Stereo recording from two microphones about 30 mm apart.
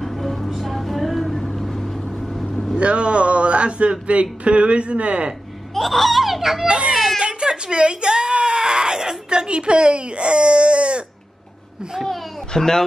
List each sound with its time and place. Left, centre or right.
0.0 s music: centre
0.5 s vehicle: centre
2.8 s a sound: right
4.1 s a man's voice: right
5.8 s speech: centre
7.2 s a sound: right
8.3 s speech: right
12.5 s a man's voice: centre